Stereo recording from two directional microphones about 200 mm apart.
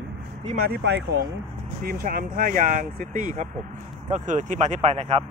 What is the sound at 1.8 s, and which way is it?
Speech, 45° right (ahead or behind).